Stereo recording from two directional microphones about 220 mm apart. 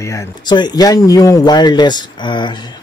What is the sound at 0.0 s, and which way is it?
A man's voice, 15° left (ahead or behind).